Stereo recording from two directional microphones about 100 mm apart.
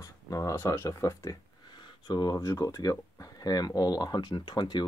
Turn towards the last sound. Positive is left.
turn(degrees=45)  # may be behind; listen again after turning